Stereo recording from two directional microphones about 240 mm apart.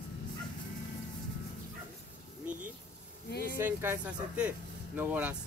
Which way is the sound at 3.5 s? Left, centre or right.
Centre.